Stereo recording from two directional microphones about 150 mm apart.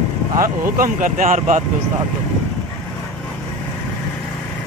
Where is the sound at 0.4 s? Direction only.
70° right (ahead or behind).